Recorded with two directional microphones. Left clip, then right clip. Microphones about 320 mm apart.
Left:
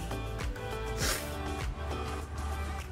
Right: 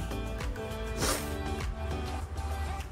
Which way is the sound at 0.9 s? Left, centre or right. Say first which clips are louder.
Right 3 dB; centre.